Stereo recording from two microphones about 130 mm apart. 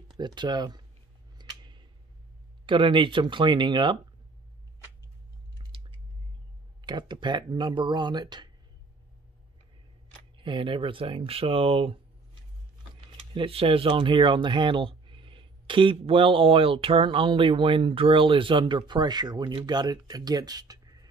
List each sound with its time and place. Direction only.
0.2 s speech: 35° right (ahead or behind)
1.4 s a sound: 35° right (ahead or behind)
2.6 s speech: 40° right (ahead or behind)
5.6 s chewing: 45° right (ahead or behind)
6.8 s speech: 35° right (ahead or behind)
10.3 s speech: 40° right (ahead or behind)
13.3 s speech: 45° right (ahead or behind); by 21.1 s 30° right (ahead or behind)